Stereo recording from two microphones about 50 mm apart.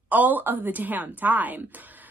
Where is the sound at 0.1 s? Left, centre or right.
Right.